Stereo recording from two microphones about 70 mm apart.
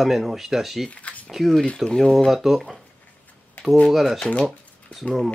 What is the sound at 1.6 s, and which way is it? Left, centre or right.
Speech, centre.